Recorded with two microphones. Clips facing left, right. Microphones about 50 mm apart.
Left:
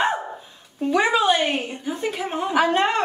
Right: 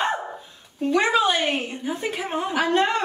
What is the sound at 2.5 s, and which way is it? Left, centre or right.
Speech, left.